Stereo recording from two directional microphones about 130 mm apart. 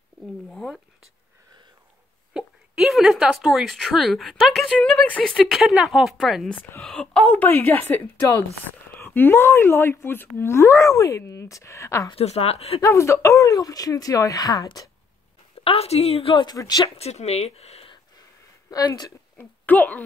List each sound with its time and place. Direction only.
0.2 s speech: 5° left (ahead or behind)
2.3 s speech: 5° right (ahead or behind)
7.4 s a woman's voice: 15° left (ahead or behind)
12.1 s a woman's voice: 50° left (ahead or behind)
12.8 s speech: 20° left (ahead or behind)
15.6 s a woman's voice: 50° left (ahead or behind)
16.4 s speech: 30° left (ahead or behind)
16.8 s speech: 55° left (ahead or behind)
18.7 s speech: 30° left (ahead or behind)
19.3 s speech: 15° left (ahead or behind)